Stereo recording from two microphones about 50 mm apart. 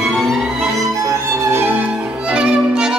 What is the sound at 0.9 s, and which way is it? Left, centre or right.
Music, right.